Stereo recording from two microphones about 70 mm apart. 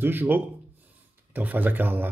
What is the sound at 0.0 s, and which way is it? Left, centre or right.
A man's voice, right.